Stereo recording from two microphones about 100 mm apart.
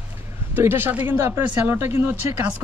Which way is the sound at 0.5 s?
20° right (ahead or behind).